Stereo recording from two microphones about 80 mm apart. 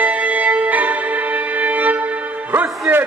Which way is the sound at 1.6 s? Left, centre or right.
Centre.